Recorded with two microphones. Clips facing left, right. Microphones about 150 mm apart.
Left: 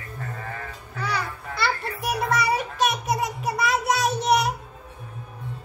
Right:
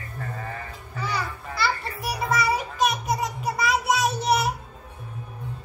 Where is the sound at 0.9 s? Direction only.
Centre (ahead or behind).